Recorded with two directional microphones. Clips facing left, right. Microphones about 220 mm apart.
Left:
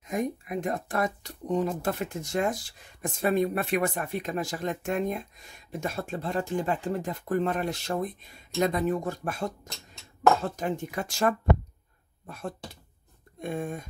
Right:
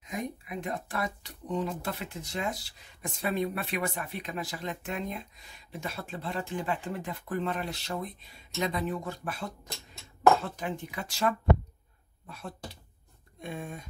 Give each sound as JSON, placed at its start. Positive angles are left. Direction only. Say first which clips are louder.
{"t": 0.1, "sound": "speech", "louder": "left 6 dB", "side_deg": 45}